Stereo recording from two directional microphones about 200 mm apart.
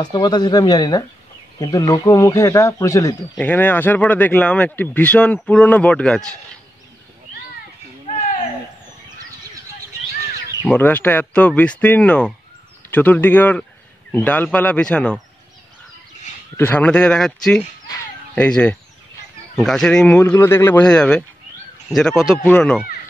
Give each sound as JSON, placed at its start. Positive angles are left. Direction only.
{"t": 0.0, "sound": "speech", "side_deg": 20}
{"t": 10.7, "sound": "speech", "side_deg": 10}
{"t": 16.5, "sound": "speech", "side_deg": 10}
{"t": 17.8, "sound": "a sound", "side_deg": 10}
{"t": 19.5, "sound": "speech", "side_deg": 0}